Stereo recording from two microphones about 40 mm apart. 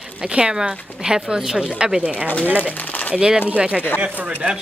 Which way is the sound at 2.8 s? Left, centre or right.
Left.